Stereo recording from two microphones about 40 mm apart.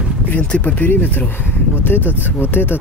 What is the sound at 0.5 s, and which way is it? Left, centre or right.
Speech, left.